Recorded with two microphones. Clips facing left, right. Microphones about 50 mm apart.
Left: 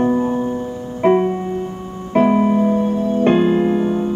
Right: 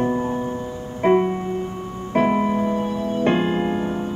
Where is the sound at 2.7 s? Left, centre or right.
Right.